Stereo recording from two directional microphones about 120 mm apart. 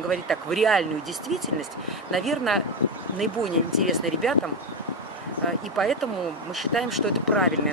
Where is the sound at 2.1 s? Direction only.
Centre (ahead or behind).